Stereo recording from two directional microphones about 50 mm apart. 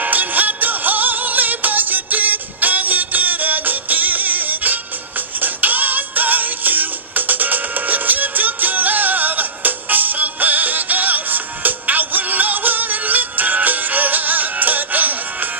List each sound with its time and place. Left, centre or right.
0.0 s music: right